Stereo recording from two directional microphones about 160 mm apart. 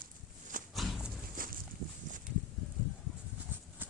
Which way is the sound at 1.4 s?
60° right (ahead or behind).